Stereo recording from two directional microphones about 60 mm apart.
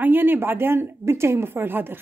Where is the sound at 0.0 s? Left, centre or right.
Right.